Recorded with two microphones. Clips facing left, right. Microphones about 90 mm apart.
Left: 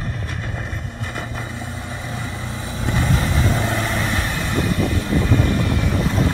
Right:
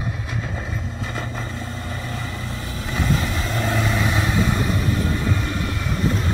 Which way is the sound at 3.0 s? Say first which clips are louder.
Even; centre (ahead or behind).